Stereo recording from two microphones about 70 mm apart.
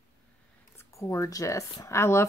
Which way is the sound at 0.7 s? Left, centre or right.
Left.